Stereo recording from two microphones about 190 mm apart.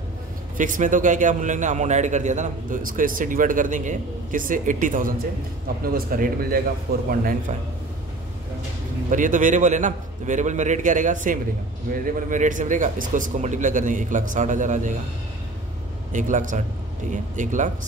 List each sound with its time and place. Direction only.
0.6 s a man's voice: 45° right (ahead or behind)
9.1 s speech: 45° right (ahead or behind)
16.1 s speech: 40° right (ahead or behind)